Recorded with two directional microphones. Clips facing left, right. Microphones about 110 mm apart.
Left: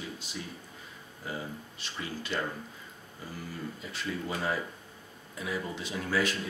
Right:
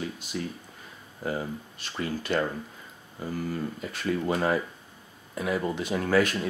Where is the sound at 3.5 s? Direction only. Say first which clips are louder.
Right 7 dB; 55° right (ahead or behind).